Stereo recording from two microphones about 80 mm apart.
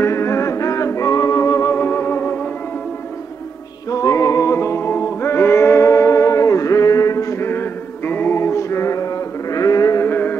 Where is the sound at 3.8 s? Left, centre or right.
Left.